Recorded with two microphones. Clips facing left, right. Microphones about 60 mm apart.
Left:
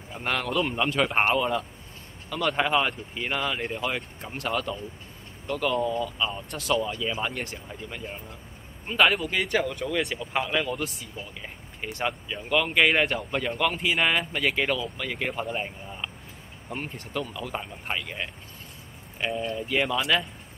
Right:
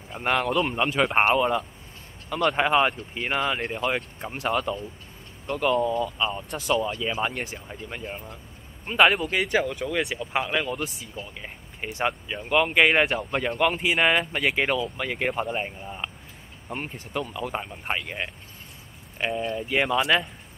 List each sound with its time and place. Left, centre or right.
0.1 s speech: centre
3.6 s speech: centre
6.5 s speech: centre
7.0 s speech: centre
7.3 s speech: centre
8.8 s speech: centre
9.4 s speech: centre
19.7 s speech: centre